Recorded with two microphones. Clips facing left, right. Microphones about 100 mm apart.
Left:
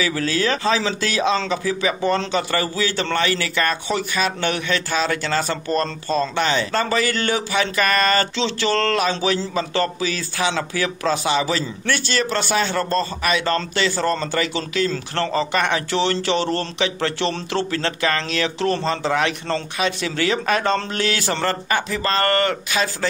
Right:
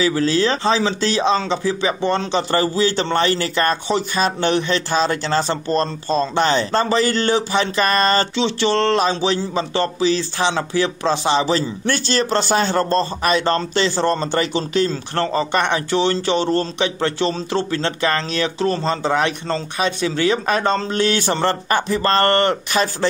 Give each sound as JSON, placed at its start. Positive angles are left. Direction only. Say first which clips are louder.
{"t": 0.0, "sound": "speech", "louder": "right 4 dB", "side_deg": -25}
{"t": 8.4, "sound": "speech", "louder": "right 3 dB", "side_deg": -20}